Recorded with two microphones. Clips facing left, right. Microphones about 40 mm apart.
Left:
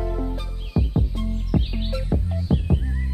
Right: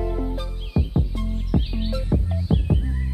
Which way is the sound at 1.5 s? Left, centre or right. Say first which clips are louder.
Even; left.